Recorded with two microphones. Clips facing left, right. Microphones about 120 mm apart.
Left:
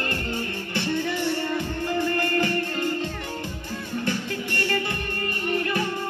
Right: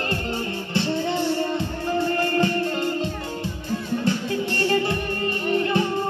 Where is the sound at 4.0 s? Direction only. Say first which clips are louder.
Right 2 dB; 25° right (ahead or behind).